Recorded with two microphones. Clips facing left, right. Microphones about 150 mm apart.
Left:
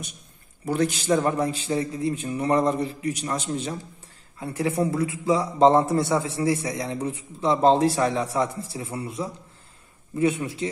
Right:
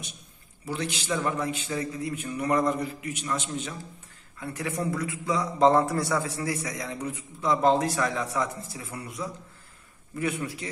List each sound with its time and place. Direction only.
0.7 s a man's voice: 45° left (ahead or behind)
4.4 s a man's voice: 25° left (ahead or behind)